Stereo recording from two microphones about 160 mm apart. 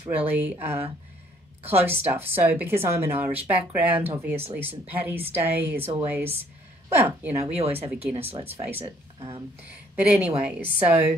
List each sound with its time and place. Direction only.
0.1 s a woman's voice: 10° right (ahead or behind)
8.3 s speech: 35° right (ahead or behind)
8.5 s a woman's voice: 15° right (ahead or behind)